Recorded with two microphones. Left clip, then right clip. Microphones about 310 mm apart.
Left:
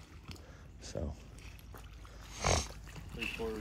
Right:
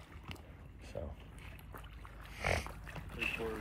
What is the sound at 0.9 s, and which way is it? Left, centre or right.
Speech, left.